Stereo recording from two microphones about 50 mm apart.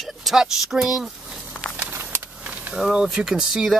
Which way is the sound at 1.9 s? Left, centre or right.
Right.